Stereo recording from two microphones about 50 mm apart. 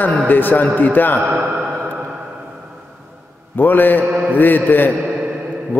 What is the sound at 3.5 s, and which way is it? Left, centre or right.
A man's voice, left.